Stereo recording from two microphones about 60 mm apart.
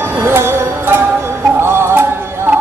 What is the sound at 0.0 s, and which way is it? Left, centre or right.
Music, right.